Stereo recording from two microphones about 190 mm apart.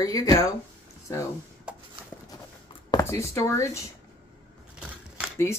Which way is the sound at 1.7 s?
5° right (ahead or behind).